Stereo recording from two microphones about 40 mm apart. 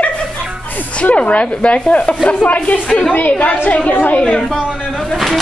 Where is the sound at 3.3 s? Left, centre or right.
Left.